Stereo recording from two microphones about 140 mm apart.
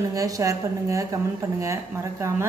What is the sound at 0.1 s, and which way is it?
A woman's voice, 25° right (ahead or behind).